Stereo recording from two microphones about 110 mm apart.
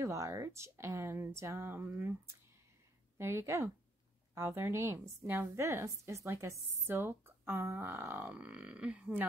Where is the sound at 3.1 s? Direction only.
25° right (ahead or behind).